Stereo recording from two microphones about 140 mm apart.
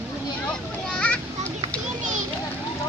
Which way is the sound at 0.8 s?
10° left (ahead or behind).